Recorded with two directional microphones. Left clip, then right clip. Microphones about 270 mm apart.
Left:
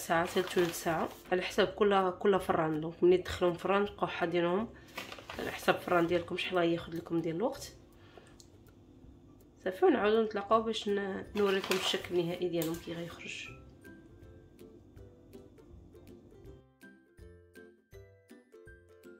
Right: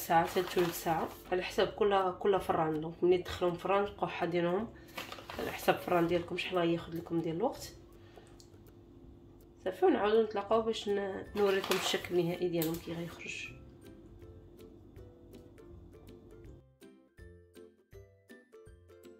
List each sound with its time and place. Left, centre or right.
0.0 s speech: centre
9.6 s speech: centre
17.6 s music: centre